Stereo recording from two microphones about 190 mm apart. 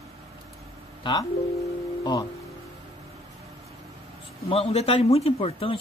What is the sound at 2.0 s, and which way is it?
Speech, 20° left (ahead or behind).